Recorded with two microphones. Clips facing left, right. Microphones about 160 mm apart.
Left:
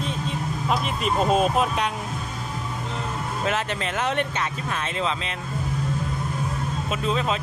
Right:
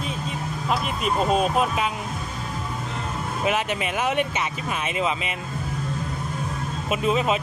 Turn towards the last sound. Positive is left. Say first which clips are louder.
# right 3 dB
turn(degrees=-10)  # may be behind; listen again after turning